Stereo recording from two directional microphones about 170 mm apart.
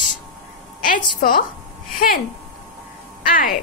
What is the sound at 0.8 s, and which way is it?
Speech, 55° left (ahead or behind).